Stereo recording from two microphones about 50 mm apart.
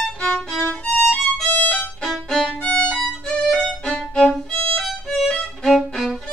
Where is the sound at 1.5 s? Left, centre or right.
Left.